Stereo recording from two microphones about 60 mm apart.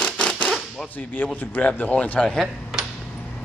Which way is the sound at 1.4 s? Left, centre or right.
Left.